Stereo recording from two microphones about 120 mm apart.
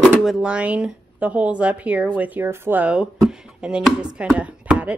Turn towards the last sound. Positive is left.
turn(degrees=-10)  # may be behind; listen again after turning